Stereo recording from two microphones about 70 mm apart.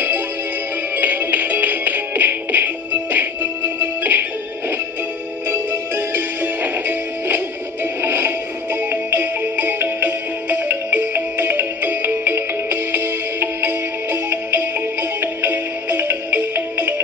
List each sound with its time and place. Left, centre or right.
0.9 s music: right